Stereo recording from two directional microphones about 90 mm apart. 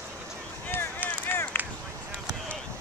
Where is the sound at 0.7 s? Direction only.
25° left (ahead or behind).